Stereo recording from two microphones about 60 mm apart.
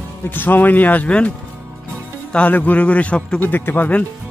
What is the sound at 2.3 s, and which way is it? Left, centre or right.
A man's voice, left.